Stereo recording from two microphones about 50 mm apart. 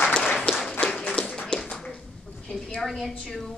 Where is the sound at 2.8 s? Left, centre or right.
Centre.